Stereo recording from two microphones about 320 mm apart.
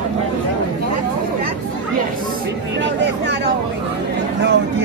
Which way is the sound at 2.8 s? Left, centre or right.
Right.